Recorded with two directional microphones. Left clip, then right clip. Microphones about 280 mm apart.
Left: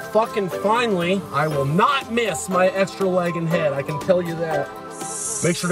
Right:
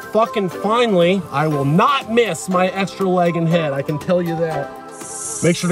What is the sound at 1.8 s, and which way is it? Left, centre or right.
A man's voice, centre.